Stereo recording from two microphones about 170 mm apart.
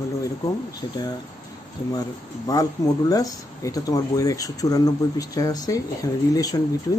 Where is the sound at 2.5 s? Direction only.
20° left (ahead or behind).